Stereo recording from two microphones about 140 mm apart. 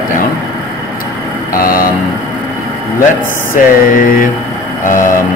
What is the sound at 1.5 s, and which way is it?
Vehicle, 90° left.